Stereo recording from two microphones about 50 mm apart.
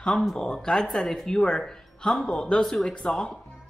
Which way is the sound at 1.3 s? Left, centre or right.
Centre.